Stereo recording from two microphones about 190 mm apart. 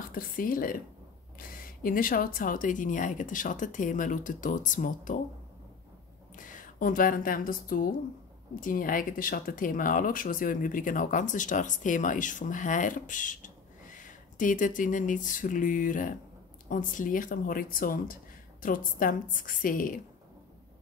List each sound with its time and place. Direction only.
0.1 s speech: 45° left (ahead or behind)
6.3 s a woman's voice: 45° left (ahead or behind)